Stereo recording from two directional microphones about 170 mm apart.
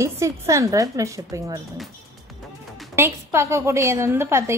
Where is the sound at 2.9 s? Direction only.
15° right (ahead or behind).